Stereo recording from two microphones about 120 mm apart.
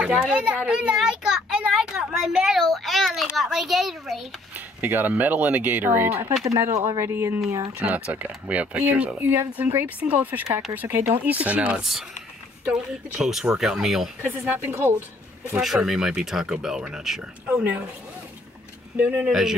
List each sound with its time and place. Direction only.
0.0 s a child's voice: 5° right (ahead or behind)
4.6 s speech: 15° right (ahead or behind)
14.2 s speech: 15° right (ahead or behind)
15.5 s speech: 5° right (ahead or behind)
19.2 s speech: centre (ahead or behind)